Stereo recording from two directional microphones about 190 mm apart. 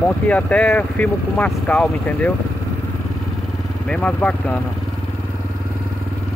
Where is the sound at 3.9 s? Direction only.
5° left (ahead or behind).